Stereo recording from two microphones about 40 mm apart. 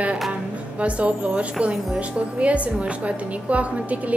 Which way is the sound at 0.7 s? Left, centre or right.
Right.